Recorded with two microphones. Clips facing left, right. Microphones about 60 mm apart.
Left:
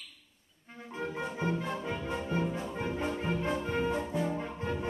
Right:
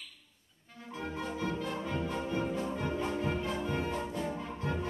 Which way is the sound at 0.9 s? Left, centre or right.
Left.